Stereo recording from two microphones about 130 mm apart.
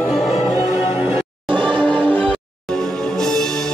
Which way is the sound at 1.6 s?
10° left (ahead or behind).